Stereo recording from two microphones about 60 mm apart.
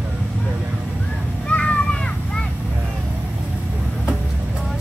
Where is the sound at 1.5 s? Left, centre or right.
Left.